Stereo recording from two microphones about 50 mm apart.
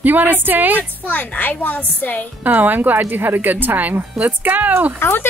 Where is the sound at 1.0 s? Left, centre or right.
Left.